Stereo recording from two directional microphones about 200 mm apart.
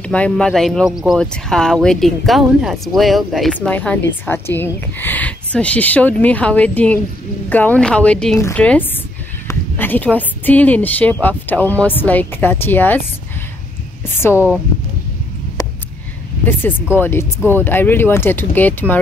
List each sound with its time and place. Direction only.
0.0 s a woman's voice: 5° left (ahead or behind)
14.3 s speech: 10° right (ahead or behind)
15.6 s a sound: 20° left (ahead or behind)
16.9 s a woman's voice: 10° left (ahead or behind)